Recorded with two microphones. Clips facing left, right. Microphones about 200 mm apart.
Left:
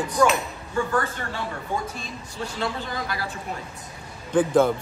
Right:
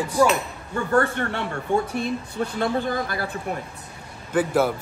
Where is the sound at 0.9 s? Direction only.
65° right (ahead or behind); by 3.2 s 50° right (ahead or behind).